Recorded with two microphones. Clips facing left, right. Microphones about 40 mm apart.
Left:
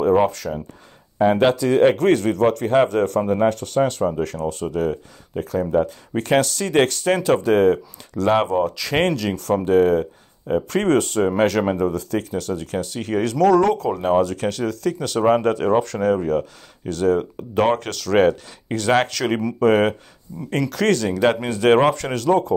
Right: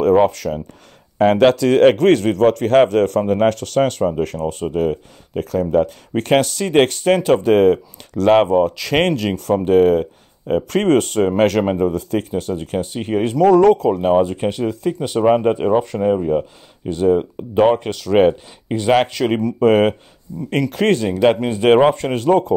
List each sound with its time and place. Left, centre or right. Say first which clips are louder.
0.0 s speech: right 3 dB; right
1.2 s speech: right 4 dB; right
14.0 s speech: right 1 dB; right
19.6 s speech: right 3 dB; right